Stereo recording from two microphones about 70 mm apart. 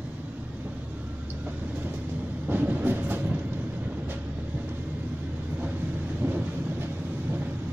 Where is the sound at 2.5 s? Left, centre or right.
Right.